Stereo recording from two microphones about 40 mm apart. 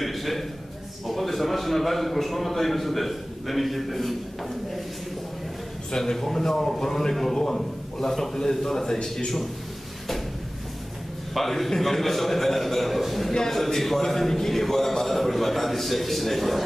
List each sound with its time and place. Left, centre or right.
0.0 s a sound: centre
1.0 s a man's voice: centre
5.9 s a man's voice: centre
11.3 s a man's voice: centre
13.3 s a man's voice: centre